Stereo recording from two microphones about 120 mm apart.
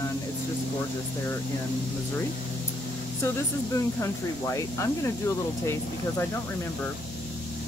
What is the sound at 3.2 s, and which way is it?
Speech, 25° left (ahead or behind).